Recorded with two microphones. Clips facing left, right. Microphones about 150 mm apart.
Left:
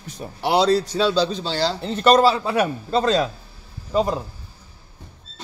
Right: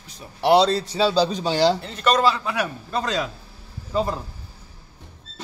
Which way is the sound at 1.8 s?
30° left (ahead or behind).